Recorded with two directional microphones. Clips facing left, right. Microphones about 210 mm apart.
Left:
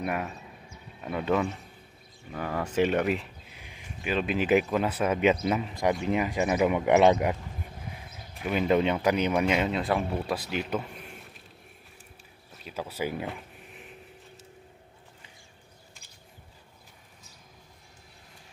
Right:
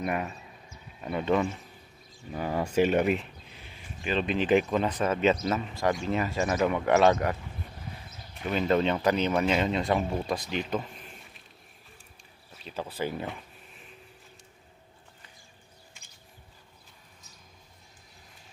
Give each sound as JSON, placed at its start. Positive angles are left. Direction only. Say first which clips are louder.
{"t": 0.0, "sound": "speech", "louder": "even", "side_deg": 0}
{"t": 2.3, "sound": "speech", "louder": "right 2 dB", "side_deg": -15}
{"t": 3.5, "sound": "speech", "louder": "left 2 dB", "side_deg": 10}
{"t": 8.4, "sound": "speech", "louder": "left 1 dB", "side_deg": 10}
{"t": 12.6, "sound": "speech", "louder": "even", "side_deg": 10}